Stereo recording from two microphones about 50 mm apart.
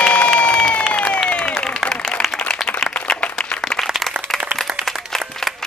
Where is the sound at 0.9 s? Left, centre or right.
Left.